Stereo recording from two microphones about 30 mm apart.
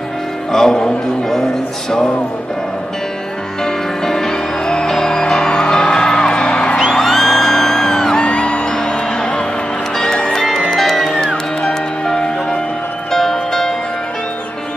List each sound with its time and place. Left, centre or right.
0.5 s speech: centre
3.6 s music: centre
6.9 s music: centre
8.2 s music: left
8.6 s music: left
10.7 s music: centre